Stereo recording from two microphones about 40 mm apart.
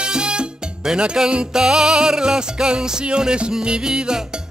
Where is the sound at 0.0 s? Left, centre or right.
Right.